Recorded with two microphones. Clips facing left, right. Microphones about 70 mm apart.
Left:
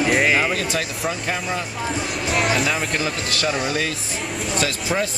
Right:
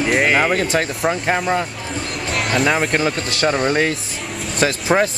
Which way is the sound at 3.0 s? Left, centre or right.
Right.